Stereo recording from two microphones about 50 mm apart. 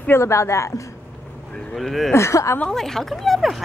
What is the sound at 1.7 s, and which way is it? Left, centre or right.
Speech, centre.